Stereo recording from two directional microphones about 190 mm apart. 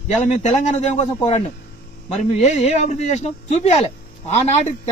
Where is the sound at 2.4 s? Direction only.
35° left (ahead or behind).